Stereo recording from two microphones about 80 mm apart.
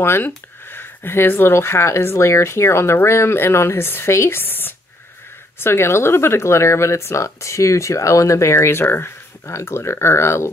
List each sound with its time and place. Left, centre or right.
0.0 s speech: left